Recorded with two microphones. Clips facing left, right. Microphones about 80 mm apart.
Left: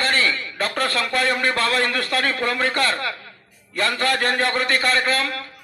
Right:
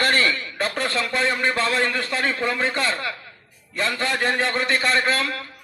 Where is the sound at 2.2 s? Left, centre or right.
Centre.